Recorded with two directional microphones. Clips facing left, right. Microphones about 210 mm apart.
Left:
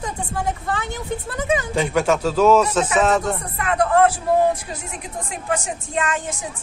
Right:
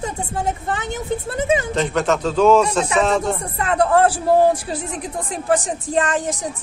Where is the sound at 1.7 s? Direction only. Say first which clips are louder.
Even; 10° left (ahead or behind).